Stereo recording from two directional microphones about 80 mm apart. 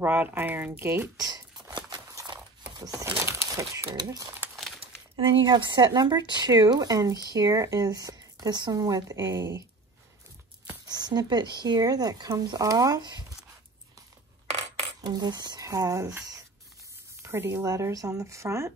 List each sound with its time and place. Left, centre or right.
0.0 s speech: right
1.2 s a sound: right
3.1 s crumpling: right
3.9 s speech: right
4.4 s crumpling: right
5.4 s speech: right
10.9 s speech: right
15.0 s speech: right
17.2 s speech: right
17.6 s speech: right